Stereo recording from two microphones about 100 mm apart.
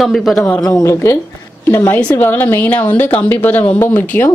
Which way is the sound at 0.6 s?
35° left (ahead or behind).